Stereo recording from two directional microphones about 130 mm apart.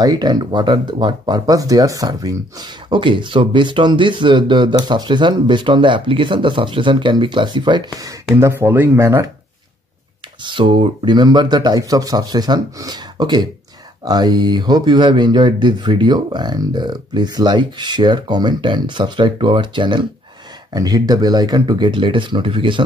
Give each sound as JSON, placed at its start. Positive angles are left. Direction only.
{"t": 0.0, "sound": "speech", "side_deg": -35}
{"t": 8.4, "sound": "speech", "side_deg": -20}
{"t": 10.4, "sound": "speech", "side_deg": -40}